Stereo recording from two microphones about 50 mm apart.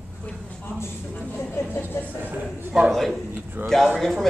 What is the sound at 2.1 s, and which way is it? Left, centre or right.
Speech, right.